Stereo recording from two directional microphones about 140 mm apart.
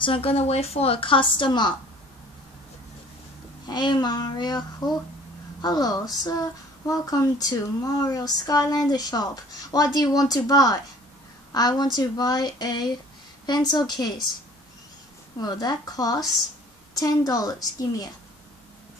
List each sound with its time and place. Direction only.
0.0 s a woman's voice: 40° left (ahead or behind)
3.6 s a child's voice: 30° left (ahead or behind)
15.4 s speech: 30° left (ahead or behind)